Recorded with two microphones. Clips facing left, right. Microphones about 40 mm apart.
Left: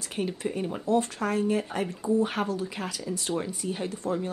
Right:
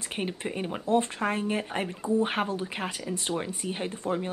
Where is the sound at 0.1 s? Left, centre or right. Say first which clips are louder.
Left 2 dB; right.